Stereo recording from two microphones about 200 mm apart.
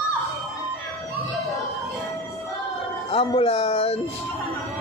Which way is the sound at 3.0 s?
30° left (ahead or behind).